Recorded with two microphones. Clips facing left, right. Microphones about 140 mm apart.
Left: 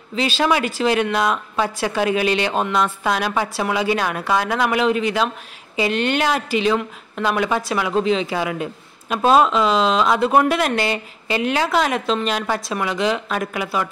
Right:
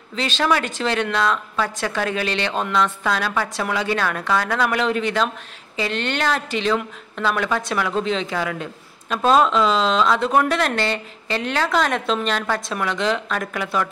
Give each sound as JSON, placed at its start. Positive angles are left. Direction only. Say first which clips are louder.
{"t": 0.1, "sound": "a woman's voice", "louder": "left 2 dB", "side_deg": 10}